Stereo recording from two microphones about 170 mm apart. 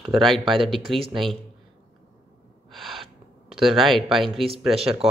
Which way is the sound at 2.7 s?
Centre (ahead or behind).